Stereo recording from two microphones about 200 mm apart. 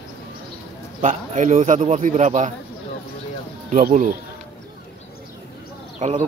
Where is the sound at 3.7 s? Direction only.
45° right (ahead or behind).